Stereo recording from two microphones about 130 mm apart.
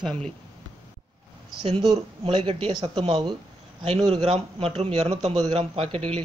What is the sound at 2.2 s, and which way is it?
Speech, 45° right (ahead or behind).